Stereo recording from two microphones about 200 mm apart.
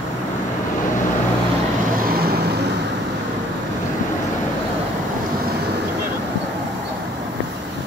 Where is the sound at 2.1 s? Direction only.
50° right (ahead or behind).